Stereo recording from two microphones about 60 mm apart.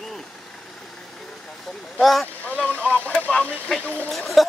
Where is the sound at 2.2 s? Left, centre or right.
Left.